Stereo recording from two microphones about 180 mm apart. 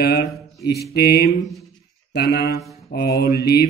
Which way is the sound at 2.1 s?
60° left (ahead or behind).